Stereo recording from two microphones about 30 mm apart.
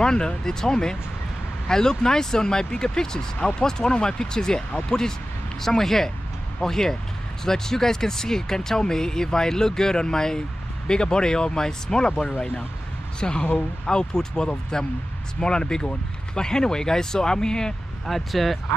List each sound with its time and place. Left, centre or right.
0.0 s speech: left
3.3 s speech: left
5.6 s speech: centre
18.3 s speech: centre